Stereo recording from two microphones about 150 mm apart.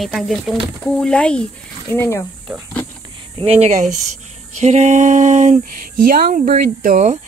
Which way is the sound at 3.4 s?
45° right (ahead or behind).